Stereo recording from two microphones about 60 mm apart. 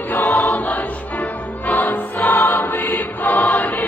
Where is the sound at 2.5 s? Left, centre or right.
Left.